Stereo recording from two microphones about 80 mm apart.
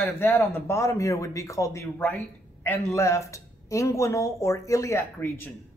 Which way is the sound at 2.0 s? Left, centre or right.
Left.